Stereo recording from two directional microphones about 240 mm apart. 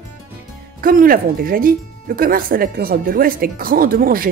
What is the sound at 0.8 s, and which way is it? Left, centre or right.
A woman's voice, right.